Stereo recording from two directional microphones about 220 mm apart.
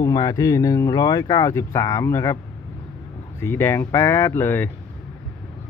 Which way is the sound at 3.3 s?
10° left (ahead or behind).